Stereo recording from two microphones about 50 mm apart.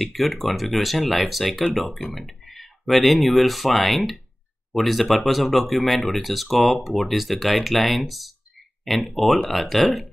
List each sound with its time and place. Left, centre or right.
0.0 s speech: centre
2.1 s a sound: centre
2.9 s speech: centre